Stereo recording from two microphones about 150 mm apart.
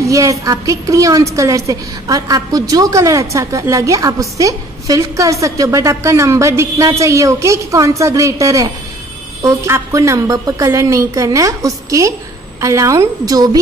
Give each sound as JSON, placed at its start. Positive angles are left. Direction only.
{"t": 0.0, "sound": "a woman's voice", "side_deg": -20}